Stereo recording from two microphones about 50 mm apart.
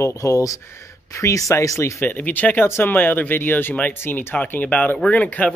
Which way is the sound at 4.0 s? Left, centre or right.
Left.